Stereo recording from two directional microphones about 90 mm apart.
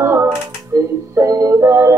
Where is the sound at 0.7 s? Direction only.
35° right (ahead or behind).